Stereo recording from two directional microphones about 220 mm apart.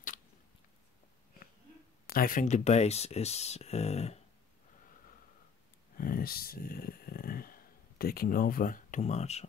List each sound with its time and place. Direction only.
2.0 s speech: 40° left (ahead or behind)
5.9 s speech: 40° left (ahead or behind)